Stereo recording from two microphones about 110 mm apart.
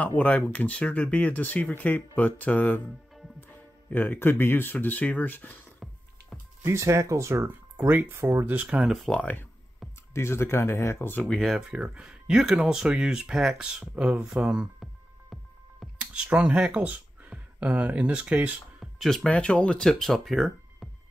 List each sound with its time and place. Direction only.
0.0 s speech: 15° left (ahead or behind)
6.6 s speech: 25° right (ahead or behind)
7.4 s speech: 15° right (ahead or behind)
8.7 s speech: centre (ahead or behind)
9.1 s speech: 15° left (ahead or behind)
11.2 s speech: centre (ahead or behind)
11.7 s speech: 10° right (ahead or behind)
15.8 s speech: 10° right (ahead or behind)
18.9 s speech: 5° left (ahead or behind)